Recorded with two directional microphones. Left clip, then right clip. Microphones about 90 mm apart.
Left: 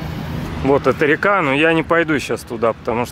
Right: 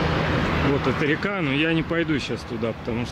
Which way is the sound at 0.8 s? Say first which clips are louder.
Left 8 dB; 55° left (ahead or behind).